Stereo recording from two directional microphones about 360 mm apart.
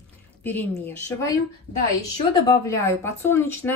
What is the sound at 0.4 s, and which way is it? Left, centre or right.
Speech, centre.